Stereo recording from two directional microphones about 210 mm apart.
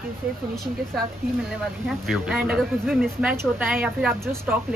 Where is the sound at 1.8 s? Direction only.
5° right (ahead or behind).